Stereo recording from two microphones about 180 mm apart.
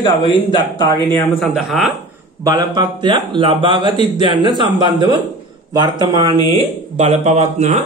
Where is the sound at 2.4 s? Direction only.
25° right (ahead or behind).